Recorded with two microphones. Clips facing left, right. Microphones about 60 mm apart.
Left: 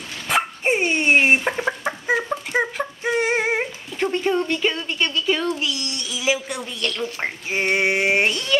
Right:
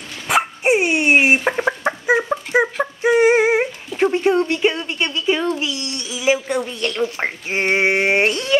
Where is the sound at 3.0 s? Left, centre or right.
Centre.